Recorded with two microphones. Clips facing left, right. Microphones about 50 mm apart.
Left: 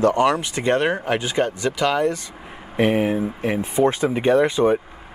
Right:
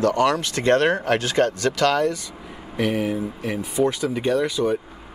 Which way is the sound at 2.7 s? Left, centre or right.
Left.